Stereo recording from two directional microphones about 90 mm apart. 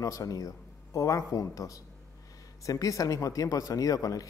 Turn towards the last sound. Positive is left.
turn(degrees=40)  # may be behind; listen again after turning